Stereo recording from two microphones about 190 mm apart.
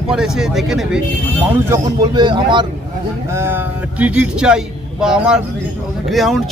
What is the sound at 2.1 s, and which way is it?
Speech, 25° right (ahead or behind).